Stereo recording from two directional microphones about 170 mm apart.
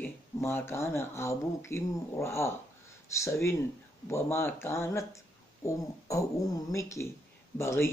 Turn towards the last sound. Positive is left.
turn(degrees=15)  # may be behind; listen again after turning